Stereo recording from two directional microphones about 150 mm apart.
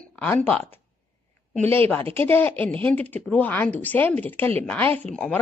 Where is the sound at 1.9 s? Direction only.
15° left (ahead or behind).